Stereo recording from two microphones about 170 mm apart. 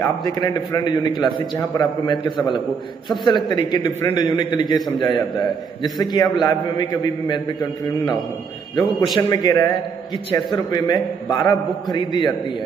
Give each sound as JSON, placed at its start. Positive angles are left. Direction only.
{"t": 0.0, "sound": "a man's voice", "side_deg": 25}
{"t": 3.3, "sound": "a man's voice", "side_deg": 25}
{"t": 8.7, "sound": "a man's voice", "side_deg": 25}